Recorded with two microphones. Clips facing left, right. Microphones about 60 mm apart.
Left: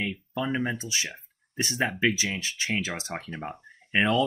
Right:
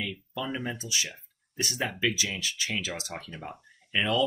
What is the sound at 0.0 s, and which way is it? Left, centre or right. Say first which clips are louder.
Speech: left 4 dB; left.